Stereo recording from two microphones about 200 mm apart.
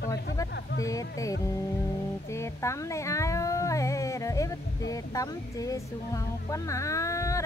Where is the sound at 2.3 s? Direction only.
15° left (ahead or behind).